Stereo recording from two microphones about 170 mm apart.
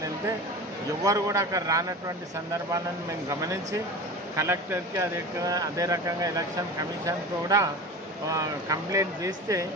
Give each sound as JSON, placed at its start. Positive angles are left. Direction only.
{"t": 1.0, "sound": "speech", "side_deg": -20}
{"t": 4.4, "sound": "speech", "side_deg": -15}